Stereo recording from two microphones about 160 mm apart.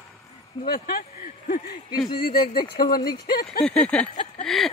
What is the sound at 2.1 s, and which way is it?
Speech, 70° left (ahead or behind).